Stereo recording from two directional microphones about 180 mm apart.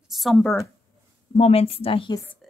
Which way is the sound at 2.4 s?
Centre (ahead or behind).